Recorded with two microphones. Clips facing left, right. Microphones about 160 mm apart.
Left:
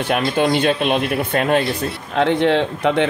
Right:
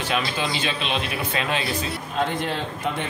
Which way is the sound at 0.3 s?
55° left (ahead or behind).